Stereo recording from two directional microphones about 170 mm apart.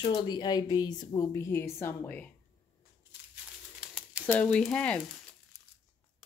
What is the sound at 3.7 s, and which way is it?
Bird, 5° right (ahead or behind).